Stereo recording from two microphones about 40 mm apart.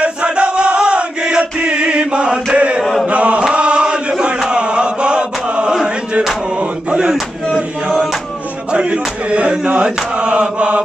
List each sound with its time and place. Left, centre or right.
0.0 s chant: right
8.7 s chant: right